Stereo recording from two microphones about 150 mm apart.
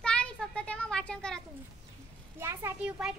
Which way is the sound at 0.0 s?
5° left (ahead or behind).